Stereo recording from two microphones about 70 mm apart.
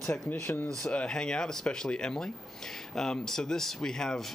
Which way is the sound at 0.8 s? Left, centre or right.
Centre.